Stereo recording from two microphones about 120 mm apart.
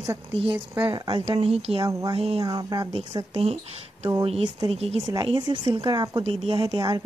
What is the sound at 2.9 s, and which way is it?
Speech, 55° right (ahead or behind).